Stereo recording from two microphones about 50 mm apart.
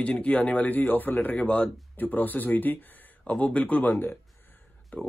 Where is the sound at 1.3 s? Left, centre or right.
Left.